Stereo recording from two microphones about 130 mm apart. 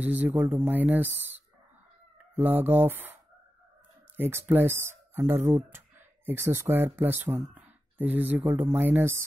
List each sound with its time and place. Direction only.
0.0 s speech: 10° right (ahead or behind)
2.3 s speech: 15° right (ahead or behind)
4.2 s speech: 15° right (ahead or behind)